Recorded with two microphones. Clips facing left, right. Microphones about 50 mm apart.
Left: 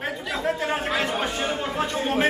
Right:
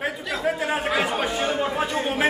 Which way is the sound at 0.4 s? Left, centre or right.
Centre.